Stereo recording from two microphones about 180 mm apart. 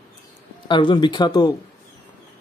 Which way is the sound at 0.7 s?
25° left (ahead or behind).